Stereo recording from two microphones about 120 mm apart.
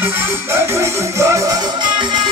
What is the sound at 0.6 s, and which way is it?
Music, 25° right (ahead or behind).